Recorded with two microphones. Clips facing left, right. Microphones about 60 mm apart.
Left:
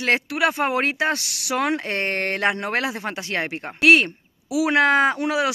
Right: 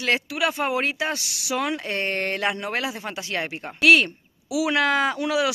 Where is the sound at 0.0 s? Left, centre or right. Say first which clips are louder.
Left 3 dB; left.